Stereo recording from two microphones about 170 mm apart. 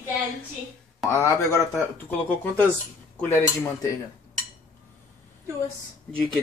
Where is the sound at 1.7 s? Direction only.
5° left (ahead or behind).